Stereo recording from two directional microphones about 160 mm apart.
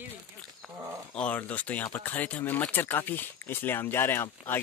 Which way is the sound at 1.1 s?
10° left (ahead or behind).